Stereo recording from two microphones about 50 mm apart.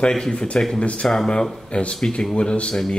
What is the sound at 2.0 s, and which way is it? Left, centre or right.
Speech, centre.